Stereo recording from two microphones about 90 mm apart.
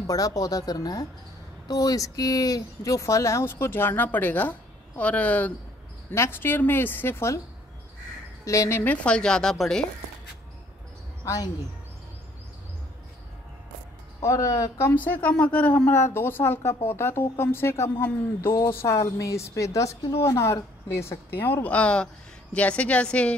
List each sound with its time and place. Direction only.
0.0 s speech: 40° left (ahead or behind); by 5.5 s 15° left (ahead or behind)
6.1 s speech: 25° left (ahead or behind)
8.5 s speech: 30° left (ahead or behind)
9.0 s speech: 10° left (ahead or behind)
14.2 s speech: 40° left (ahead or behind)
15.2 s speech: 15° left (ahead or behind)